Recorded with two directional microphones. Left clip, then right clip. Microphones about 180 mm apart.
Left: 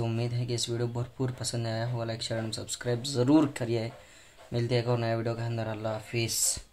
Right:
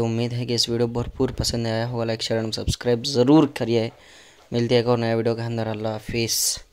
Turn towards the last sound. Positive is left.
turn(degrees=-30)  # may be behind; listen again after turning